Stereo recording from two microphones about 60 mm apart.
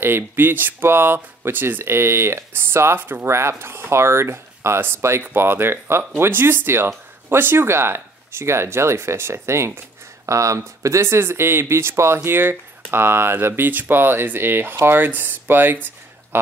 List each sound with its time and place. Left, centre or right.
0.0 s speech: right
3.3 s speech: right
10.2 s speech: right